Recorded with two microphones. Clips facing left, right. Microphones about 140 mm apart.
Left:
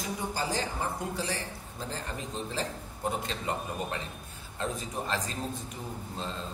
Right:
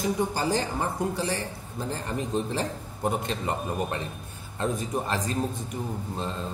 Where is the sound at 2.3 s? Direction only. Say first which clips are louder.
Right 5 dB; 55° right (ahead or behind).